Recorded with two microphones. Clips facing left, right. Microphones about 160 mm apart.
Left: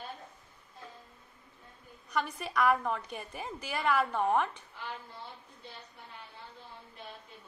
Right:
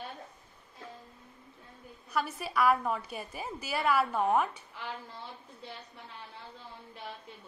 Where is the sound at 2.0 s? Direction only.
5° right (ahead or behind).